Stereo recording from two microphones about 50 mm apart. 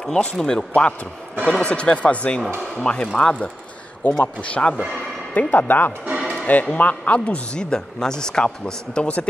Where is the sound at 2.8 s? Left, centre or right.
Centre; by 5.9 s left.